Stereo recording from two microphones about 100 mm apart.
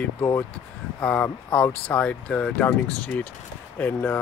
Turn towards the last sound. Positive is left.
turn(degrees=15)  # may be behind; listen again after turning